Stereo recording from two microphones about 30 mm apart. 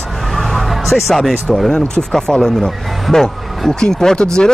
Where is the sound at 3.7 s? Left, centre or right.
Left.